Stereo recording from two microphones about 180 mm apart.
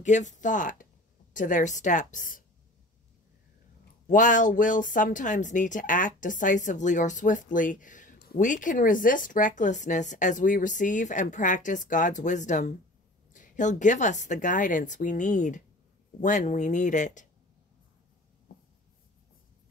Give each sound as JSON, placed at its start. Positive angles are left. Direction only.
{"t": 0.0, "sound": "a woman's voice", "side_deg": 45}
{"t": 4.1, "sound": "a woman's voice", "side_deg": 45}